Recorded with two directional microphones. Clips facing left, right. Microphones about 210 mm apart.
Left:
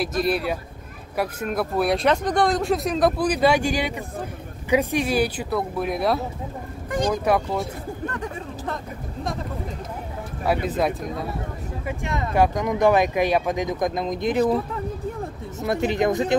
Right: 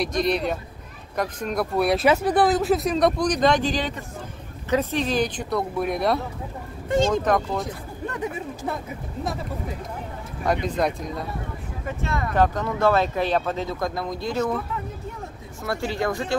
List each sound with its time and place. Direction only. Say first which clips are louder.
0.0 s speech: even; 5° left (ahead or behind)
8.1 s speech: right 2 dB; 10° right (ahead or behind)
10.4 s speech: left 1 dB; 5° left (ahead or behind)
11.8 s speech: even; 15° left (ahead or behind)
15.6 s speech: left 4 dB; 20° left (ahead or behind)